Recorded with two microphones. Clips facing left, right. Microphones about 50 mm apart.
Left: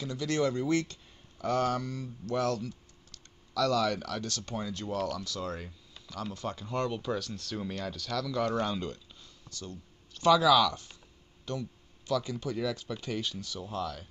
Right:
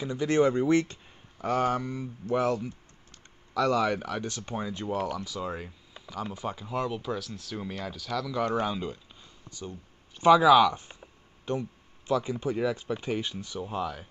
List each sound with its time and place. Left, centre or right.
0.0 s speech: right